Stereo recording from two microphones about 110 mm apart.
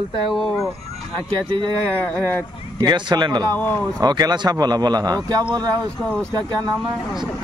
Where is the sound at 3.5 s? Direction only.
15° left (ahead or behind).